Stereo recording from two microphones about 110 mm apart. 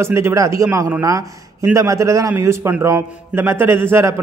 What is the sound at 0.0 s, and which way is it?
Speech, 25° right (ahead or behind).